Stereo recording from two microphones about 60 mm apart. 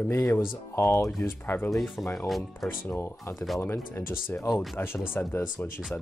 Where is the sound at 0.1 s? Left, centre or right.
Left.